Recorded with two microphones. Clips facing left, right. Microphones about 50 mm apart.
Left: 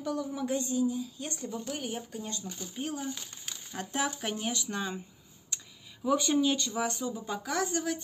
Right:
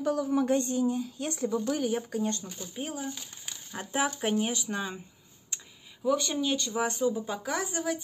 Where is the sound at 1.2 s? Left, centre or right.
Right.